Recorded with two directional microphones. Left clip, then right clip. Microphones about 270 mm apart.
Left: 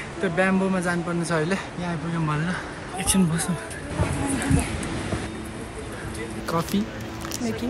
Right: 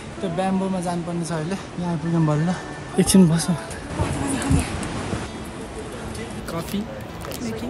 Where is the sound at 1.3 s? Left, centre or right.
Centre.